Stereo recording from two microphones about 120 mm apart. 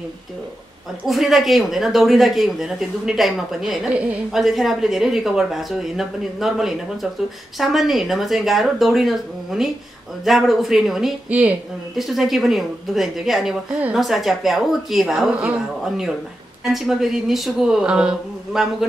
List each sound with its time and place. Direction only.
1.0 s speech: centre (ahead or behind)